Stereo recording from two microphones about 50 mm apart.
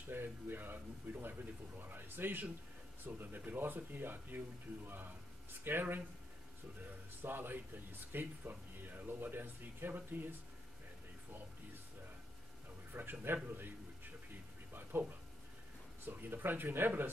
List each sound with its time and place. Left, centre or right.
0.1 s a sound: right
1.2 s speech: right
7.2 s speech: right
12.9 s speech: right
14.7 s a sound: right
16.1 s speech: right